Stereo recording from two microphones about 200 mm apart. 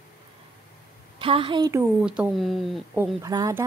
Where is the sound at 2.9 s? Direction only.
10° right (ahead or behind).